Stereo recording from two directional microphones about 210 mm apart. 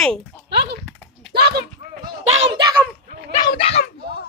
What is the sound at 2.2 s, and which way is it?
Speech, 30° right (ahead or behind).